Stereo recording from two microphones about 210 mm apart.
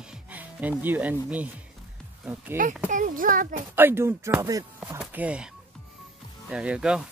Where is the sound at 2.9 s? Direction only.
40° right (ahead or behind).